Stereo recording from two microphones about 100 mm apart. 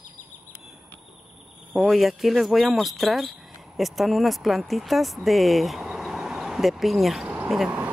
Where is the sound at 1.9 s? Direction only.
Centre (ahead or behind).